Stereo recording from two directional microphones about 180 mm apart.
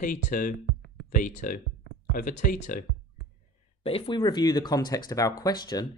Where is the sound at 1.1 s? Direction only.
50° left (ahead or behind).